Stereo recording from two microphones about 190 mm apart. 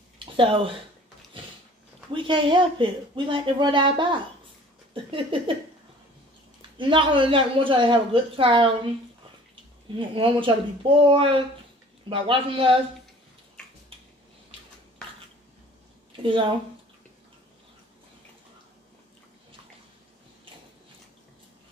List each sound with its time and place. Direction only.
0.2 s speech: 25° right (ahead or behind)
2.1 s speech: 25° right (ahead or behind)
6.8 s speech: 25° right (ahead or behind)
9.9 s speech: 30° right (ahead or behind)
16.2 s speech: 25° right (ahead or behind)